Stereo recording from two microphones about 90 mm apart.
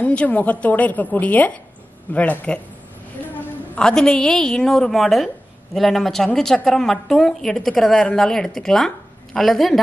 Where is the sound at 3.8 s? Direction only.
5° left (ahead or behind).